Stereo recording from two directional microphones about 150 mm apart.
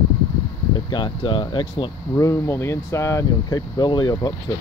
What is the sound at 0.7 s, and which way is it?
Speech, 30° left (ahead or behind).